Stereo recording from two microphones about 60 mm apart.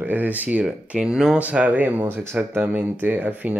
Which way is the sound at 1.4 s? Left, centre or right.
Right.